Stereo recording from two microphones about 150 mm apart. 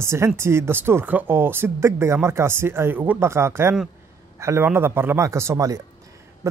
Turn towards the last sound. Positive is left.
turn(degrees=-20)  # may be behind; listen again after turning